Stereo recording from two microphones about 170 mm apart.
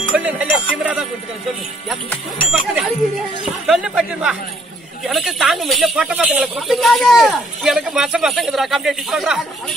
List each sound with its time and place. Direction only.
0.1 s music: 10° right (ahead or behind)
3.6 s speech: 5° right (ahead or behind)